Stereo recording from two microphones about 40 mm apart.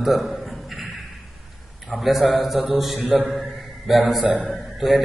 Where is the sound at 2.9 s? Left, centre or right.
Right.